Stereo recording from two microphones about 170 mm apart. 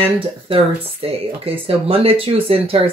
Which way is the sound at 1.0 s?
35° right (ahead or behind).